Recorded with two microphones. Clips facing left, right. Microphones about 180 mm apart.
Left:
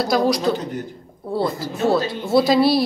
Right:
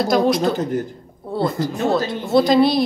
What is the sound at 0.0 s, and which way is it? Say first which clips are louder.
Speech: right 2 dB; centre (ahead or behind).